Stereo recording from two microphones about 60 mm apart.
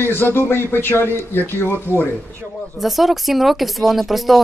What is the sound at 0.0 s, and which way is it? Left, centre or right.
Speech, left.